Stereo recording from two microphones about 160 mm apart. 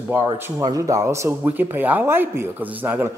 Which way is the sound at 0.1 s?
20° right (ahead or behind).